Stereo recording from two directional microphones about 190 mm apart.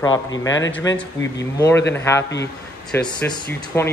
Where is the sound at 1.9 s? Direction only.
15° left (ahead or behind).